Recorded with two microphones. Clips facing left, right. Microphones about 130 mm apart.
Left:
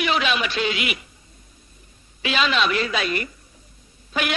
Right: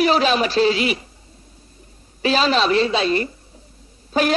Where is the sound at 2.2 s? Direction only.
35° right (ahead or behind).